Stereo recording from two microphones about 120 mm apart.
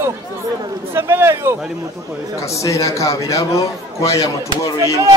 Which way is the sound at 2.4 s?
25° left (ahead or behind).